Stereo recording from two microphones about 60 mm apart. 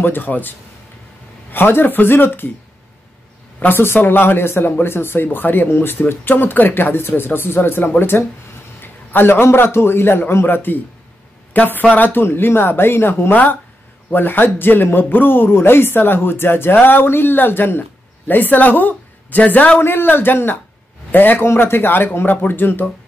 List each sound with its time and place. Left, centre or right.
0.0 s speech: left
3.6 s speech: left
13.3 s speech: left
19.8 s speech: left